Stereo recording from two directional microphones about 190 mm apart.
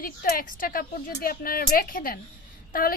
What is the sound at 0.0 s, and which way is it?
Speech, 50° left (ahead or behind).